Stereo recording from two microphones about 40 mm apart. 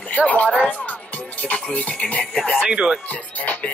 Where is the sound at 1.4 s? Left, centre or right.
Left.